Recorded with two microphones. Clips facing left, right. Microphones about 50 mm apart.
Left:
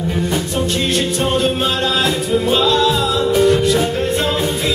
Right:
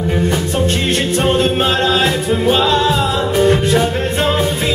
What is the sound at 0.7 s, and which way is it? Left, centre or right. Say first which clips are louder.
Music: right 1 dB; right.